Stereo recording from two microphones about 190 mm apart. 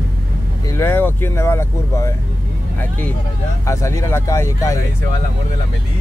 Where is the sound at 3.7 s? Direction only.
15° left (ahead or behind).